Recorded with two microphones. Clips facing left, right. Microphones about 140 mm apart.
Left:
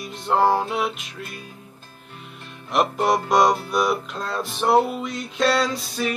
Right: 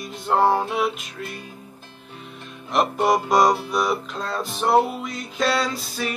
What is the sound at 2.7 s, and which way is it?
Music, centre (ahead or behind).